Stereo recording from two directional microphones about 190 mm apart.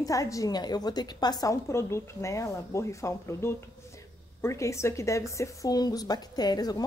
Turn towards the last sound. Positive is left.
turn(degrees=20)  # may be behind; listen again after turning